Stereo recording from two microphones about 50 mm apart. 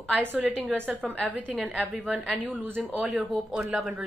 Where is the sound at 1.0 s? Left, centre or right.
Left.